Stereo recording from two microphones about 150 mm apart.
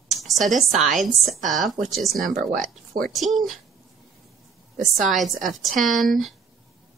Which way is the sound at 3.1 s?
Centre (ahead or behind).